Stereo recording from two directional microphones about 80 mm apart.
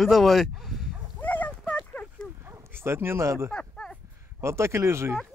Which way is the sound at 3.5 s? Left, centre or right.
Centre.